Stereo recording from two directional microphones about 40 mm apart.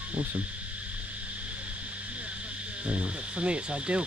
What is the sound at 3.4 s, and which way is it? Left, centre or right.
Speech, right.